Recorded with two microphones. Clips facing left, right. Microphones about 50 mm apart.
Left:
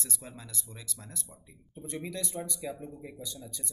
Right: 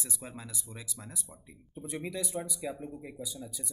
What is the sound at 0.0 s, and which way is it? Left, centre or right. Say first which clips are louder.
Speech: right 1 dB; centre.